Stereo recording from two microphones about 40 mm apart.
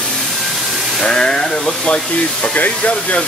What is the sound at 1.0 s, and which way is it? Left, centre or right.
Speech, centre.